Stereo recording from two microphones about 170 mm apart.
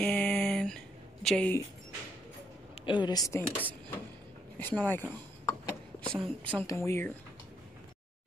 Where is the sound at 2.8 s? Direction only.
25° left (ahead or behind); by 5.0 s 10° left (ahead or behind).